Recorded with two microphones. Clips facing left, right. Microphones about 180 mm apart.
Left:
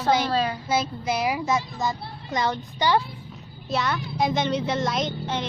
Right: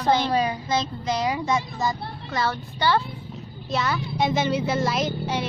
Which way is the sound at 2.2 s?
15° left (ahead or behind).